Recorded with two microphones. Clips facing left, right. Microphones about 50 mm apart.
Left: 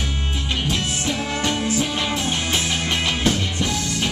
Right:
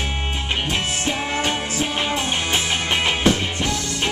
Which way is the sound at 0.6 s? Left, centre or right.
Right.